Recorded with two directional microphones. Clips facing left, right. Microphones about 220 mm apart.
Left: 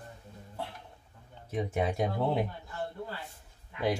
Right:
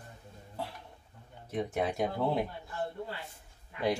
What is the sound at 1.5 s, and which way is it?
Speech, 5° left (ahead or behind).